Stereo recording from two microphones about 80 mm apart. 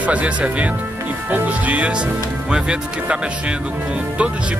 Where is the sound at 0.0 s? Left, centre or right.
Centre.